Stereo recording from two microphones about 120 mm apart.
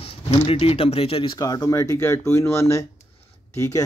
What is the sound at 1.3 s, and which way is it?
Speech, 30° left (ahead or behind).